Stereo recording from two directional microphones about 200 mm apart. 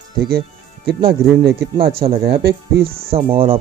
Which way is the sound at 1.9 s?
25° right (ahead or behind).